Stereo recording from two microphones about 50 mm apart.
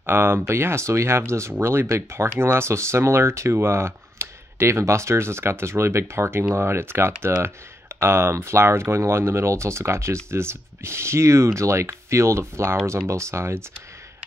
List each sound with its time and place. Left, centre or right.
0.0 s speech: right